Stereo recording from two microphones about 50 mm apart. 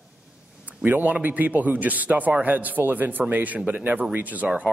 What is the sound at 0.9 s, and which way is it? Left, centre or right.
A man's voice, right.